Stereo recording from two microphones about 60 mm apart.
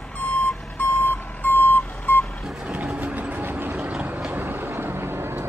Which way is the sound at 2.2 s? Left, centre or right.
Centre.